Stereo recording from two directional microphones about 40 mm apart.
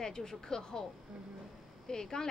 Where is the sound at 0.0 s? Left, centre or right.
Centre.